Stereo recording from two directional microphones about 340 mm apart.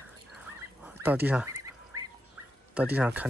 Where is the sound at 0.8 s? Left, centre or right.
Centre.